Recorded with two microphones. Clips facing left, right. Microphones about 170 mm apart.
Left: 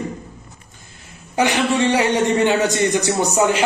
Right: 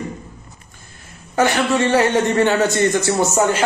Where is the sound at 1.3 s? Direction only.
15° left (ahead or behind).